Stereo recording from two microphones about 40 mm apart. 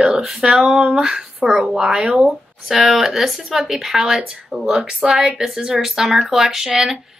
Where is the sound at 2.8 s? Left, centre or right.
Centre.